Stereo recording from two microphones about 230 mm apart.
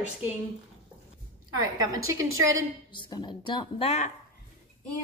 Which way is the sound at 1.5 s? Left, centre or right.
Centre.